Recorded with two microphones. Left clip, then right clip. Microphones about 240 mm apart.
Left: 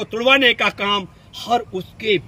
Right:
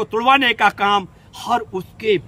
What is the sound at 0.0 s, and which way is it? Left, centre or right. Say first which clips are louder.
A man's voice: even; centre.